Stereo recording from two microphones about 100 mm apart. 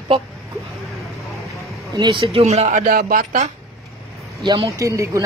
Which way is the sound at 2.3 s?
90° right.